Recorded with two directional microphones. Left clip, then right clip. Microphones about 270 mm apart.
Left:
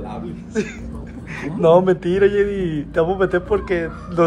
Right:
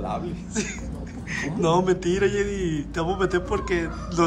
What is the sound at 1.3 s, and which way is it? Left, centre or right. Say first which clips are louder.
A man's voice: left 8 dB; centre.